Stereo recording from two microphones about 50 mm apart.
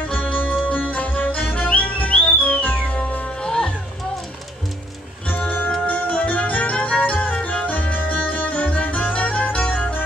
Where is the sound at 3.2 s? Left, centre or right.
Centre.